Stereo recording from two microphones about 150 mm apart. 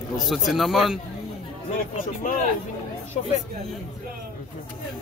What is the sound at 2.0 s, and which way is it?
Speech, 60° left (ahead or behind).